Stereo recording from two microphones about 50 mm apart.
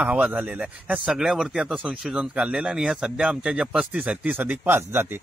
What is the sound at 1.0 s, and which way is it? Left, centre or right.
Speech, centre.